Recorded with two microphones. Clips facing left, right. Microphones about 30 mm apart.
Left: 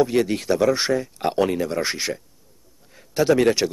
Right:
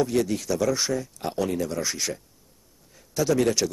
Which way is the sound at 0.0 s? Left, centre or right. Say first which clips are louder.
Left 4 dB; left.